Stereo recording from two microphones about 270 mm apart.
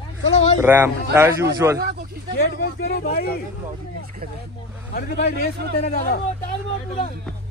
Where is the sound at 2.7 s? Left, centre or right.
Left.